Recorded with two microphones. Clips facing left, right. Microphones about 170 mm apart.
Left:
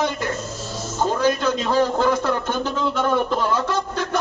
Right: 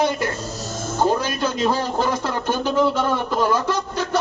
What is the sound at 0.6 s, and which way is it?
Music, 50° right (ahead or behind).